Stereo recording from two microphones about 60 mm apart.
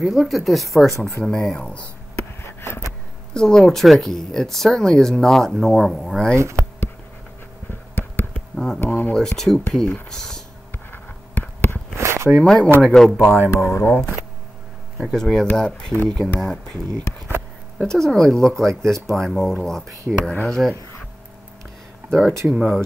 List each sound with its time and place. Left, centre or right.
0.0 s speech: centre
3.3 s speech: centre
6.3 s speech: right
8.3 s a sound: centre
8.7 s a sound: left
9.1 s speech: centre
11.9 s a sound: right
12.4 s speech: centre
13.6 s speech: left
15.0 s speech: centre
17.8 s speech: centre
22.5 s speech: centre